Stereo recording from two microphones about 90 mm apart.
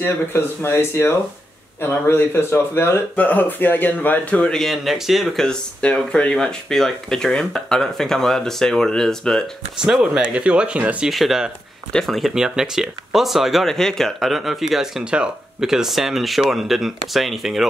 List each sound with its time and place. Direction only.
0.0 s a man's voice: 25° left (ahead or behind); by 9.4 s 5° left (ahead or behind)
9.8 s speech: 10° right (ahead or behind)
11.1 s speech: centre (ahead or behind)